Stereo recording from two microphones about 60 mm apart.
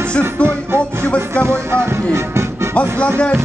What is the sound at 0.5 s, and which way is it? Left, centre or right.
Music, right.